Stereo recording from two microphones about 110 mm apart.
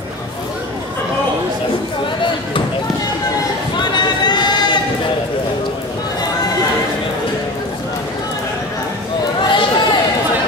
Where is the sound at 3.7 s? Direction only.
40° left (ahead or behind).